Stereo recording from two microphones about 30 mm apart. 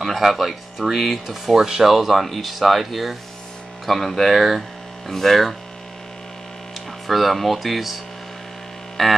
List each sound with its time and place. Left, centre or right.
0.0 s speech: centre
3.8 s speech: centre
4.3 s hum: centre
5.1 s speech: centre
7.1 s speech: centre